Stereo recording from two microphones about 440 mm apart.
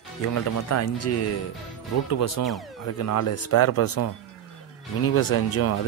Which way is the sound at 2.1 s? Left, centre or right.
Left.